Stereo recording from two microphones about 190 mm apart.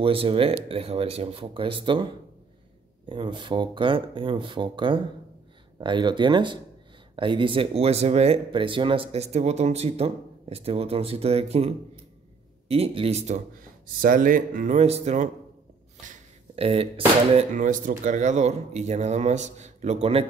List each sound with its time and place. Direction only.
0.0 s speech: 30° right (ahead or behind)
3.1 s speech: 25° right (ahead or behind)
13.8 s speech: 45° right (ahead or behind)
16.5 s speech: 30° right (ahead or behind)
17.6 s speech: 45° right (ahead or behind)